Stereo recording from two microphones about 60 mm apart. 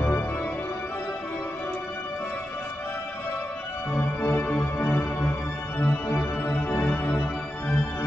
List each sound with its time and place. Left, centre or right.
3.9 s music: left